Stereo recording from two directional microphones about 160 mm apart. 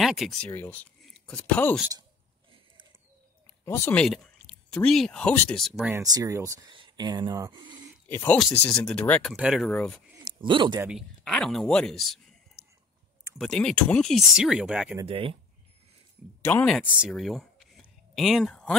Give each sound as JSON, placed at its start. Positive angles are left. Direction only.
{"t": 0.0, "sound": "speech", "side_deg": 0}
{"t": 0.5, "sound": "speech", "side_deg": 10}
{"t": 3.6, "sound": "speech", "side_deg": 20}
{"t": 3.9, "sound": "speech", "side_deg": 5}
{"t": 6.0, "sound": "speech", "side_deg": -20}
{"t": 8.1, "sound": "speech", "side_deg": 15}
{"t": 10.2, "sound": "a man's voice", "side_deg": -30}
{"t": 10.8, "sound": "speech", "side_deg": -5}
{"t": 13.4, "sound": "speech", "side_deg": 5}
{"t": 15.0, "sound": "speech", "side_deg": -35}
{"t": 16.4, "sound": "speech", "side_deg": 10}
{"t": 16.8, "sound": "speech", "side_deg": -10}
{"t": 17.1, "sound": "a sound", "side_deg": 0}